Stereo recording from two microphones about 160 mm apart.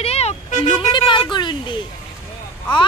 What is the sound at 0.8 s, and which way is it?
A woman's voice, 30° left (ahead or behind).